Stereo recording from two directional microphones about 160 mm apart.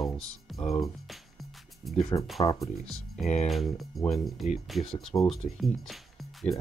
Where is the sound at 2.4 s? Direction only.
20° left (ahead or behind).